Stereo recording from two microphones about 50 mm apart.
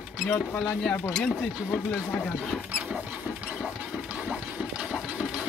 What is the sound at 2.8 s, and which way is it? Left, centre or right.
Rodents, right.